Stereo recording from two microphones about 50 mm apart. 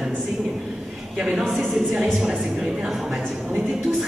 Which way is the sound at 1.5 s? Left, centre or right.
Centre.